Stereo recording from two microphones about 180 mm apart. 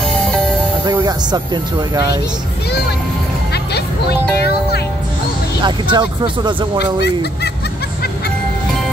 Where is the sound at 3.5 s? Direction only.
65° left (ahead or behind).